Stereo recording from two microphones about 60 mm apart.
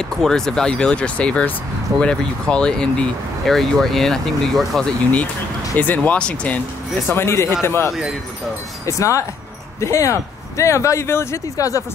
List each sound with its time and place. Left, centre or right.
0.0 s speech: centre
5.8 s speech: left
7.1 s speech: left
8.8 s speech: left
11.5 s speech: left